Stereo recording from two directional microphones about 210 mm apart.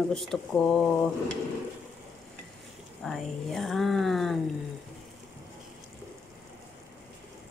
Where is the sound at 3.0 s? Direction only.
Centre (ahead or behind).